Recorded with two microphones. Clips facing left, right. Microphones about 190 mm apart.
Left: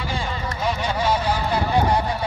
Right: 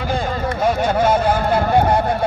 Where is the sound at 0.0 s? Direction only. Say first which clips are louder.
Right 6 dB; 50° right (ahead or behind).